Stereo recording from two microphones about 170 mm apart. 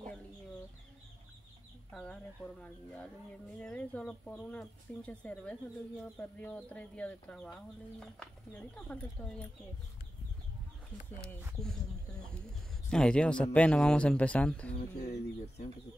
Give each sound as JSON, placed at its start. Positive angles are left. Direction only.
{"t": 1.9, "sound": "speech", "side_deg": 5}
{"t": 11.2, "sound": "speech", "side_deg": 5}
{"t": 14.8, "sound": "speech", "side_deg": 40}